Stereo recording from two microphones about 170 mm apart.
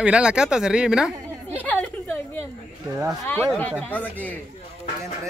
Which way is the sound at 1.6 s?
10° left (ahead or behind).